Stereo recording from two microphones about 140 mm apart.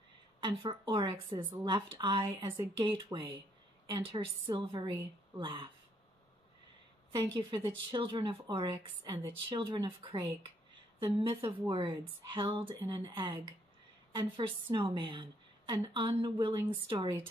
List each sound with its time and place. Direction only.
0.4 s speech: 35° right (ahead or behind)
7.1 s speech: 35° right (ahead or behind)